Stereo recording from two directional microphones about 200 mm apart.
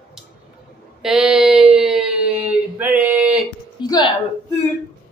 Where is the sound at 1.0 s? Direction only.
5° right (ahead or behind).